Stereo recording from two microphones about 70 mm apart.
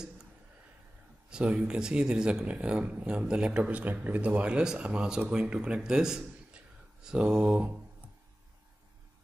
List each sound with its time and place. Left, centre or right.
1.3 s a man's voice: centre